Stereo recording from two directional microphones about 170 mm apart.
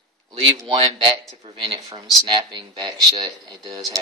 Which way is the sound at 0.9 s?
30° right (ahead or behind).